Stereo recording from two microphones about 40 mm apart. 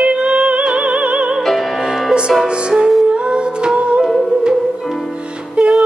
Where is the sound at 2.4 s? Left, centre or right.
Right.